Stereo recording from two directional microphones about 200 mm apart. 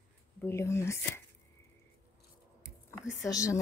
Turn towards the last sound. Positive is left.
turn(degrees=15)  # may be behind; listen again after turning